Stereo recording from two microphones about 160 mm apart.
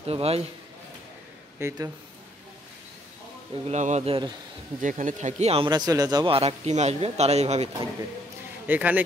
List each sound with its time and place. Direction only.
0.0 s speech: 40° right (ahead or behind)
1.6 s a man's voice: 15° right (ahead or behind)
3.6 s speech: 45° right (ahead or behind)
4.8 s speech: 50° right (ahead or behind)
5.7 s speech: 25° right (ahead or behind)
6.3 s speech: 40° right (ahead or behind)
8.6 s a man's voice: 10° right (ahead or behind)